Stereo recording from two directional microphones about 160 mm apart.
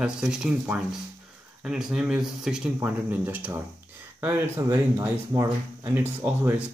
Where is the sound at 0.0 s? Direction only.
5° right (ahead or behind).